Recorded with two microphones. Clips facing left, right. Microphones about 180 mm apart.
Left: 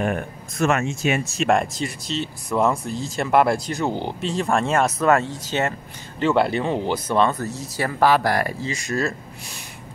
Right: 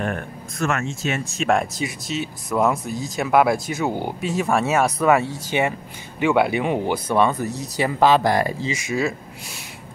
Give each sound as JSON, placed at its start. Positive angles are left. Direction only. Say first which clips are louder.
{"t": 0.6, "sound": "speech", "louder": "left 3 dB", "side_deg": 20}
{"t": 1.4, "sound": "speech", "louder": "right 1 dB", "side_deg": 0}